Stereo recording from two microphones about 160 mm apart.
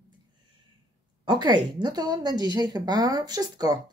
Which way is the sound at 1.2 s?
25° right (ahead or behind).